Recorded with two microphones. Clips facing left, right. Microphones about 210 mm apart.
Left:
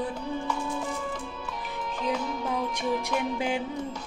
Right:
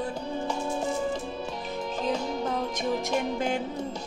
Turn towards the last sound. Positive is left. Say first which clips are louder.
# right 1 dB
turn(degrees=-40)  # may be behind; listen again after turning